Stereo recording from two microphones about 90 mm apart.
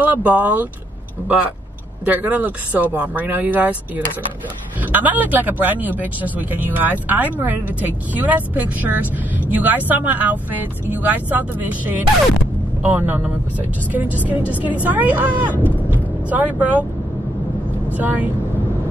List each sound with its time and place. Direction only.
0.0 s speech: 20° right (ahead or behind)
2.0 s speech: 20° right (ahead or behind)
15.6 s vehicle: 20° right (ahead or behind)
17.9 s speech: 20° right (ahead or behind)